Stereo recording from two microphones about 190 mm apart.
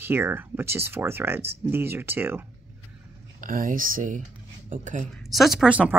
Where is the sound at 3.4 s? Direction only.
45° right (ahead or behind).